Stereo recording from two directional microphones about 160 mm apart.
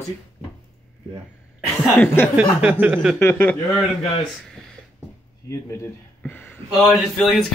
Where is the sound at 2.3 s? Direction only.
10° right (ahead or behind).